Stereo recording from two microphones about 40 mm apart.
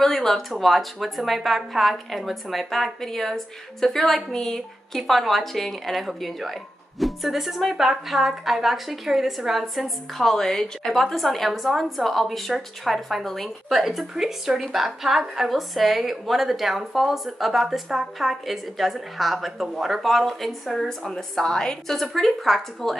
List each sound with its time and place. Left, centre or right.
0.0 s a woman's voice: centre
7.7 s a woman's voice: centre
13.9 s a woman's voice: centre
21.1 s a woman's voice: centre
21.9 s a woman's voice: centre